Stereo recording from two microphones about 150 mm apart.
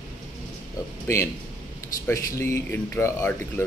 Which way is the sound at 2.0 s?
20° left (ahead or behind).